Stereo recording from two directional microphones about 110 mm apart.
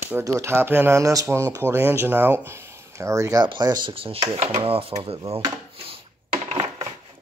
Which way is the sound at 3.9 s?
60° right (ahead or behind).